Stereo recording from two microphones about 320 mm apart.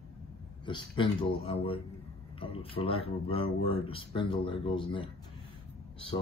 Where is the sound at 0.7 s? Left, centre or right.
Centre.